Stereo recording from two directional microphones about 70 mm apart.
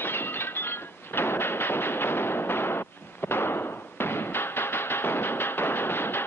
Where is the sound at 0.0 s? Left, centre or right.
Left.